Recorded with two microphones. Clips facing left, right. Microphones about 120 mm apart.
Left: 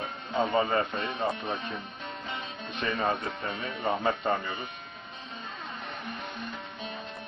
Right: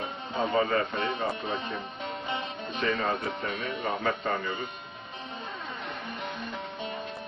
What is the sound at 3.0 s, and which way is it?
Speech, 25° left (ahead or behind).